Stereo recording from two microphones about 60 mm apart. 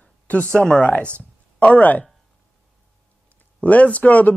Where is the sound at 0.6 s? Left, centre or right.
Centre.